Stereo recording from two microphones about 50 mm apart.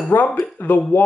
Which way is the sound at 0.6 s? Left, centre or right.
Left.